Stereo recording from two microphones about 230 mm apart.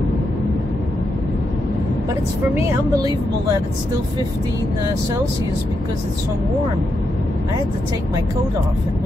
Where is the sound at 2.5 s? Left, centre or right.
Centre.